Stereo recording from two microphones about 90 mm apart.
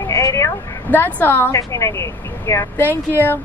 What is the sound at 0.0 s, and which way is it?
Vehicle, 35° left (ahead or behind).